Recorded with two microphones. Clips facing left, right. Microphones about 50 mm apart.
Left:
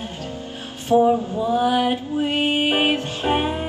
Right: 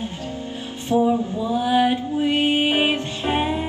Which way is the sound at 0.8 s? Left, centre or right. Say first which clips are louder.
Left 3 dB; left.